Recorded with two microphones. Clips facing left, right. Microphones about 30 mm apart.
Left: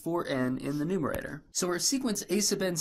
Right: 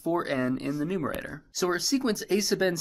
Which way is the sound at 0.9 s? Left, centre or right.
Right.